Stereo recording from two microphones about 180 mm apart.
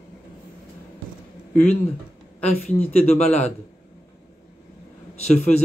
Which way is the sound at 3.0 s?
35° left (ahead or behind).